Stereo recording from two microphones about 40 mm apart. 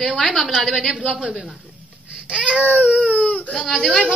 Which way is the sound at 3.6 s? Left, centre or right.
Centre.